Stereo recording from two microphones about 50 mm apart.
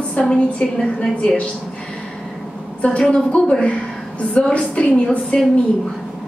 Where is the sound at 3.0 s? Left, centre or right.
Centre.